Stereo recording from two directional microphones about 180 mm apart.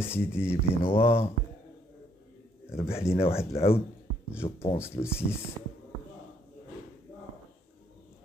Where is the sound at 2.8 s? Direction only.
35° left (ahead or behind).